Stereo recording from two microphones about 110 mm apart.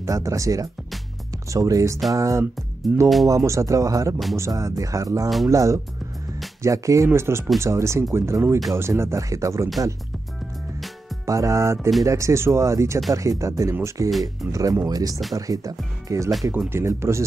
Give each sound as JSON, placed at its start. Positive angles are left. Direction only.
{"t": 0.0, "sound": "speech", "side_deg": -30}
{"t": 2.9, "sound": "speech", "side_deg": -5}
{"t": 3.3, "sound": "speech", "side_deg": -30}
{"t": 11.2, "sound": "speech", "side_deg": -30}